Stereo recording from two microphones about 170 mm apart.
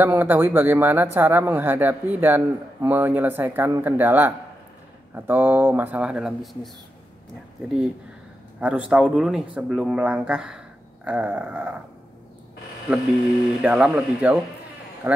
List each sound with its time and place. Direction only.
0.0 s speech: 10° right (ahead or behind)
13.6 s speech: 5° right (ahead or behind)
15.0 s speech: 20° right (ahead or behind)